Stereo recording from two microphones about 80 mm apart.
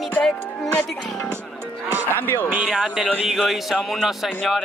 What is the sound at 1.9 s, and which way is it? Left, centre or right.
Music, right.